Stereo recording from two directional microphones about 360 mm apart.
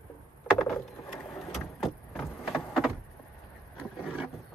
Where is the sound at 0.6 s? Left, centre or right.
Centre.